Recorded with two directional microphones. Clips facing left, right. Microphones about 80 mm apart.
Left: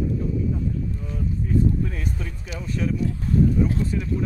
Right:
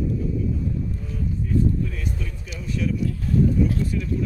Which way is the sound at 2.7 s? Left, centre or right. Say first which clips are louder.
Even; left.